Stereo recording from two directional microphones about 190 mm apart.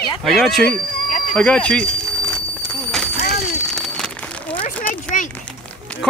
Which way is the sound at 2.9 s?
Centre (ahead or behind).